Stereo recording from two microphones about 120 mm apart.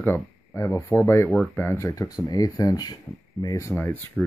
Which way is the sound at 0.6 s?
25° left (ahead or behind).